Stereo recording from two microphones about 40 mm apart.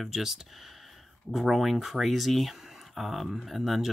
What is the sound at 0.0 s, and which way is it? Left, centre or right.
Speech, centre.